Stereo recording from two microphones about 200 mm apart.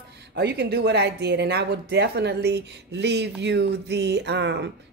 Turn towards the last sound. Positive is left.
turn(degrees=-60)  # may be behind; listen again after turning